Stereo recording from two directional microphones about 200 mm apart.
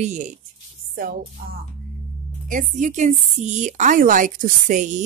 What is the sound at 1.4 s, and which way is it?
A woman's voice, 45° right (ahead or behind).